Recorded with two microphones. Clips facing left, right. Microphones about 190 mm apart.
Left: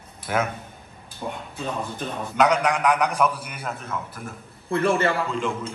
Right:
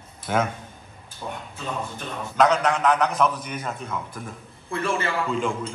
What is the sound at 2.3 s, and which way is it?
A man's voice, 10° left (ahead or behind).